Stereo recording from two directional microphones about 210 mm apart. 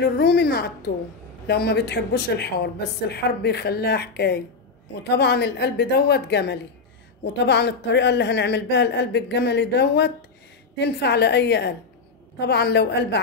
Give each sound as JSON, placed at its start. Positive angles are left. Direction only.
{"t": 0.0, "sound": "a woman's voice", "side_deg": 50}